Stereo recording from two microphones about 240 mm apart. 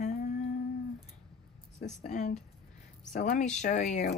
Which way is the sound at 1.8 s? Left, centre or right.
Left.